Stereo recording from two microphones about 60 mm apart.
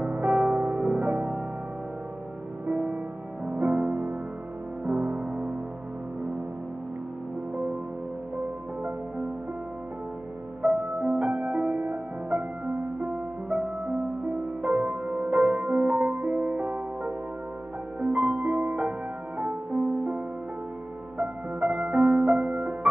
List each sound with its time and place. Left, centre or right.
0.0 s music: right
2.6 s music: centre
10.6 s music: centre
21.2 s music: centre